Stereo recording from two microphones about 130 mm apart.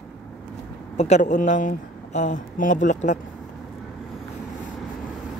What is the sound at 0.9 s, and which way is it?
Speech, 60° left (ahead or behind).